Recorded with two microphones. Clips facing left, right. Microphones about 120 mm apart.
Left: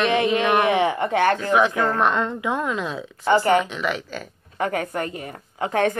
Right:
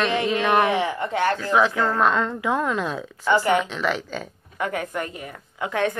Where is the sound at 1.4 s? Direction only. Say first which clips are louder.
Left 1 dB; 15° left (ahead or behind).